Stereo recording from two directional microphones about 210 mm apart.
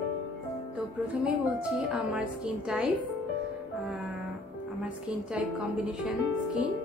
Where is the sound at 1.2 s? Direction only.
5° right (ahead or behind).